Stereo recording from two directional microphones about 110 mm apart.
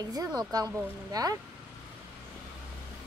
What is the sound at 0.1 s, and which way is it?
Speech, 35° right (ahead or behind).